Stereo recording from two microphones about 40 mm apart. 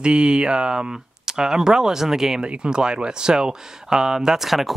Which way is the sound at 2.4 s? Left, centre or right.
Right.